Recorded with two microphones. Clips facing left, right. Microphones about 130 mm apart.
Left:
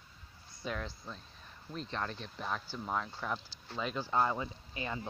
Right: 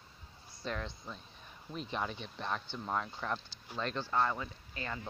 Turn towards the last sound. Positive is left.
turn(degrees=20)  # may be behind; listen again after turning